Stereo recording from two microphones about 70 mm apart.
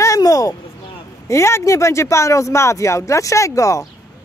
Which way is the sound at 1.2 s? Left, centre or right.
Left.